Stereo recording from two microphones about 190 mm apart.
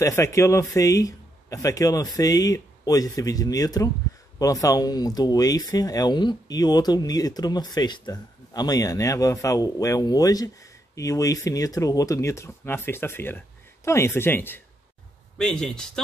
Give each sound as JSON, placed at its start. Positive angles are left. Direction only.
{"t": 0.0, "sound": "speech", "side_deg": 15}